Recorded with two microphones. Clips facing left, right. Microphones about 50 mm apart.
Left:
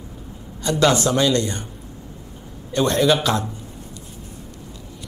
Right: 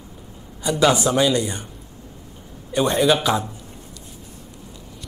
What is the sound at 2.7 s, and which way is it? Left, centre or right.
Speech, centre.